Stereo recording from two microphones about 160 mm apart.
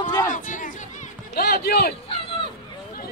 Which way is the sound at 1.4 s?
75° left (ahead or behind).